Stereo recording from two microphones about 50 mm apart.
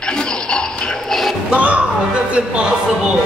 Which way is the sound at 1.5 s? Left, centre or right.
Right.